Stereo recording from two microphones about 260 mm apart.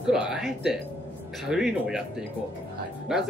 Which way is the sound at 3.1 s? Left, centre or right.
Centre.